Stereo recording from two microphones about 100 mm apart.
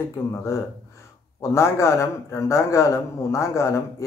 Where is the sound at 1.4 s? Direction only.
30° left (ahead or behind).